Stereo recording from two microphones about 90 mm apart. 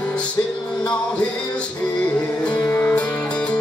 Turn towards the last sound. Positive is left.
turn(degrees=20)  # may be behind; listen again after turning